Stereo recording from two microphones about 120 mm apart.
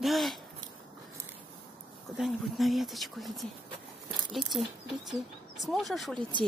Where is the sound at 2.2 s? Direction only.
Centre (ahead or behind).